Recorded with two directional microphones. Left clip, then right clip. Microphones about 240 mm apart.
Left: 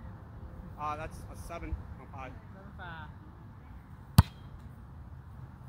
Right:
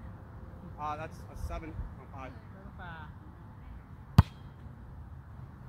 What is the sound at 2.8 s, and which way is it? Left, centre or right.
Vehicle, left.